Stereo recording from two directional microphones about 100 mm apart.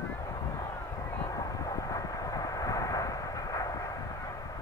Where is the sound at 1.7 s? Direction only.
35° left (ahead or behind).